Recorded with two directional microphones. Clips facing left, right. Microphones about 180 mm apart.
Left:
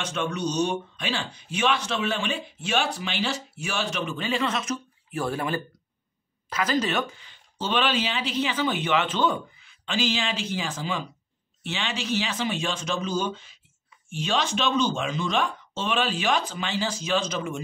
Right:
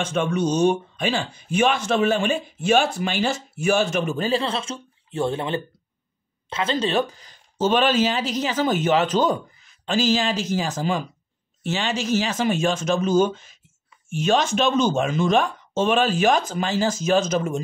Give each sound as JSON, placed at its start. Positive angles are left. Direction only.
{"t": 0.0, "sound": "speech", "side_deg": -50}